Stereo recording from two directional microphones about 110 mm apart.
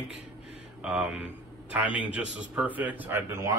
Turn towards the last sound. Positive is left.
turn(degrees=-25)  # may be behind; listen again after turning